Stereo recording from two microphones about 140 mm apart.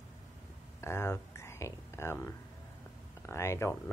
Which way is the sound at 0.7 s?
20° left (ahead or behind).